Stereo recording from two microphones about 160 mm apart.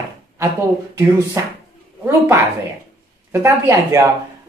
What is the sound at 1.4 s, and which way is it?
Speech, 20° right (ahead or behind).